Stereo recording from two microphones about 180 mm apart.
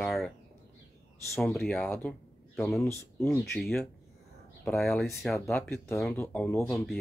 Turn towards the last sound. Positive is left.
turn(degrees=15)  # may be behind; listen again after turning